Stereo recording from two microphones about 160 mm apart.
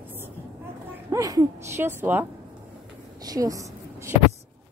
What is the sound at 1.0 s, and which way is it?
A woman's voice, 20° right (ahead or behind).